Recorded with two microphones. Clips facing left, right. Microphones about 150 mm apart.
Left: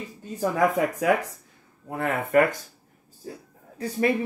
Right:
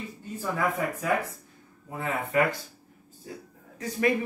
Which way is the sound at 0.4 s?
90° left.